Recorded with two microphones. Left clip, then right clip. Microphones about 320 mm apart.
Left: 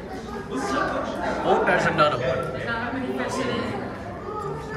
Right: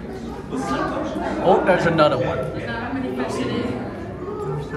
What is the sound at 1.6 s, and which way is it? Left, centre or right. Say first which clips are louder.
Speech: right 3 dB; centre.